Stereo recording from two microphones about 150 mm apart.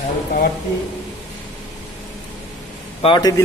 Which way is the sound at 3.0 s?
25° left (ahead or behind).